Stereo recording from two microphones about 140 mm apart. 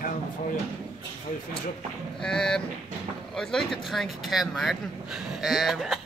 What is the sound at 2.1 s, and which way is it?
Speech, 5° left (ahead or behind).